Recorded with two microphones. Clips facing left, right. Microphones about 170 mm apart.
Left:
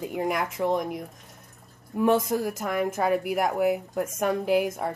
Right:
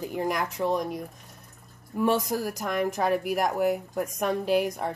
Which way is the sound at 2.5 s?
5° left (ahead or behind).